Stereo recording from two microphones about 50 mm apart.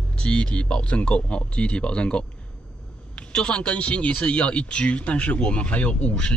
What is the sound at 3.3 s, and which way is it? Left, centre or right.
Speech, left.